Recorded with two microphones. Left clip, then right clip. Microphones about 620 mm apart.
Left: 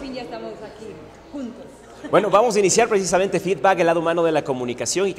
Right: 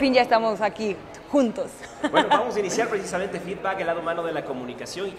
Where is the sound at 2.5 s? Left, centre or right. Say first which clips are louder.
Left 7 dB; left.